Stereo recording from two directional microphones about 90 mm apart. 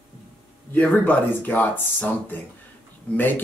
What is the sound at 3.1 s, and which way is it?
Speech, 20° left (ahead or behind).